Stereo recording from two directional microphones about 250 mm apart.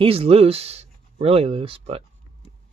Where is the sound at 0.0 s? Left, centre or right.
Right.